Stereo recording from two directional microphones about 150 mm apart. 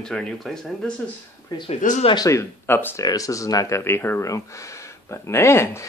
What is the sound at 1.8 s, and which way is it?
Speech, 60° left (ahead or behind).